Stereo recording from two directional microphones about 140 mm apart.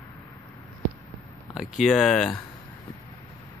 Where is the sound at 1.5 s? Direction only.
Centre (ahead or behind).